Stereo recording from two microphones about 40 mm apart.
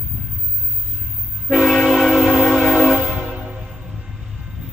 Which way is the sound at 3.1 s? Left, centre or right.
Right.